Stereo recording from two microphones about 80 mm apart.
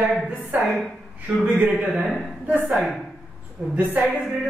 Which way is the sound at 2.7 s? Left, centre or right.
Centre.